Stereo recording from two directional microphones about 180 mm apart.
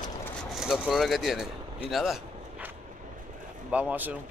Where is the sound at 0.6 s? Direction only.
5° right (ahead or behind).